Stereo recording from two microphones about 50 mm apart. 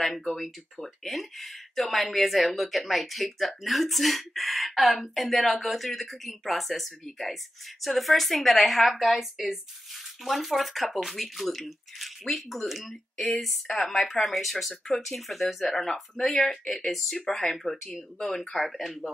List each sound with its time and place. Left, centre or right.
0.0 s speech: centre
18.6 s speech: centre